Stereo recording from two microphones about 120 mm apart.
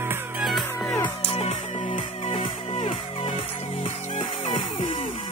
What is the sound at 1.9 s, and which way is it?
Music, 50° left (ahead or behind).